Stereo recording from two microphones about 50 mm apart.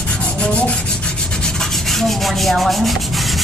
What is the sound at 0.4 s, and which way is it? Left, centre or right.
Rub, left.